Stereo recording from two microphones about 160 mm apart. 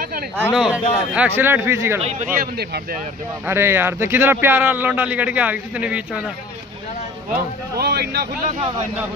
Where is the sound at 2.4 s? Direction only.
75° right (ahead or behind).